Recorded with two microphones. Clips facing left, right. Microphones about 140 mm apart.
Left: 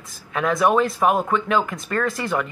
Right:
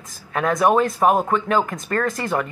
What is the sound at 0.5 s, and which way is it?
Speech, 25° right (ahead or behind).